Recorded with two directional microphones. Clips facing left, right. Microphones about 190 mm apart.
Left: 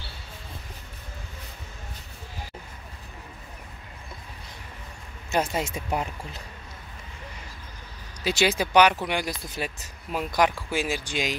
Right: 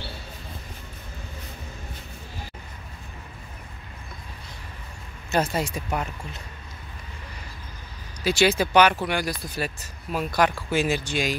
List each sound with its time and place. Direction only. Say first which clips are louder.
5.3 s speech: right 2 dB; 15° left (ahead or behind)
8.2 s speech: right 3 dB; 20° left (ahead or behind)